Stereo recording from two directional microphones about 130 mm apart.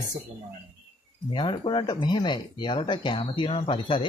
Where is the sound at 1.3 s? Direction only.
40° left (ahead or behind).